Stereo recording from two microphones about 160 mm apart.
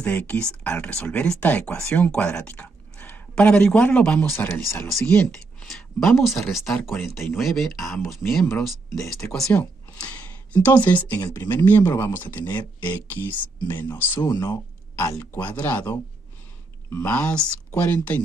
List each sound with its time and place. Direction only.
0.0 s speech: 10° left (ahead or behind)
8.0 s speech: 15° left (ahead or behind)
8.3 s speech: centre (ahead or behind)